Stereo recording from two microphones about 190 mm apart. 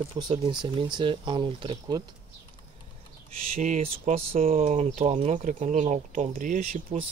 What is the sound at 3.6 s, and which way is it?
Speech, 40° right (ahead or behind).